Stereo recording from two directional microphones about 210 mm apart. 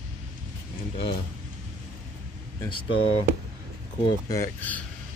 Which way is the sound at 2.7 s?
25° left (ahead or behind).